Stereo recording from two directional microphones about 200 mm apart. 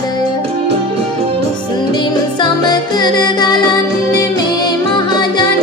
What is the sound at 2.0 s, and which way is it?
Music, 25° left (ahead or behind).